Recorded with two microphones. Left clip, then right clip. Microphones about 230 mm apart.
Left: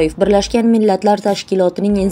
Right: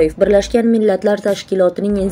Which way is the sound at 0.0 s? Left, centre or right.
Left.